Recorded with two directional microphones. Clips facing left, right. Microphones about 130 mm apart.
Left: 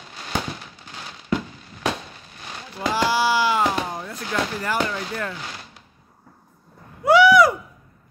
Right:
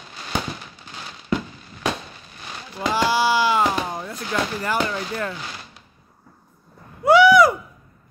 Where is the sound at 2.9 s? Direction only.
20° right (ahead or behind).